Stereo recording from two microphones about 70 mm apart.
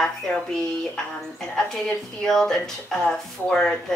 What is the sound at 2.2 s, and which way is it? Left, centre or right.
A woman's voice, centre.